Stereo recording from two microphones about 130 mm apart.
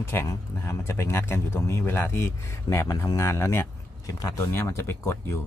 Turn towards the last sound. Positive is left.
turn(degrees=20)  # may be behind; listen again after turning